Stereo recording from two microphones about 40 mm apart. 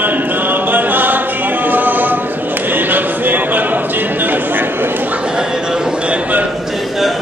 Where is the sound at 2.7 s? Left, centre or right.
Right.